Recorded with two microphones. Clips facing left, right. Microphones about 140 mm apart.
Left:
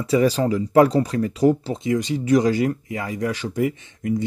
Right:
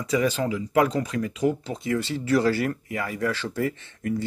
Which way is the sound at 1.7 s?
20° left (ahead or behind).